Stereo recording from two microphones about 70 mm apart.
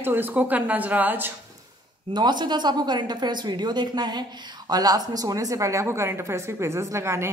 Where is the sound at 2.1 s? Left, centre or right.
Right.